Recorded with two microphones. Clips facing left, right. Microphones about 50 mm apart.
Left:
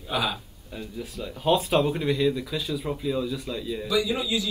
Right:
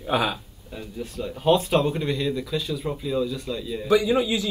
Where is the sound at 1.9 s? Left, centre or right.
Centre.